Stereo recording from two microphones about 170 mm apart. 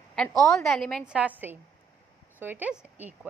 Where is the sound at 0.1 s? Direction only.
5° left (ahead or behind).